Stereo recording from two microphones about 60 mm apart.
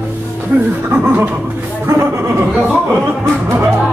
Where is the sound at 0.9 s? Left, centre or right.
Right.